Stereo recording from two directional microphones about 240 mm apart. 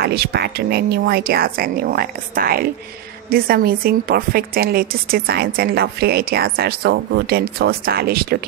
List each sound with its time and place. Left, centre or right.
0.0 s a woman's voice: right